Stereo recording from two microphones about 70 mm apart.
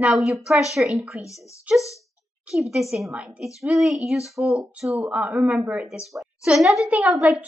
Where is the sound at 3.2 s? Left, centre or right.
Centre.